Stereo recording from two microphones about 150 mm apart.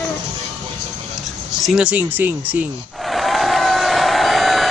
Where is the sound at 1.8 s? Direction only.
10° right (ahead or behind).